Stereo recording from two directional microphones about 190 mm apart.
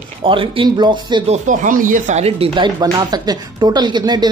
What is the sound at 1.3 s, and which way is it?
Speech, 40° right (ahead or behind).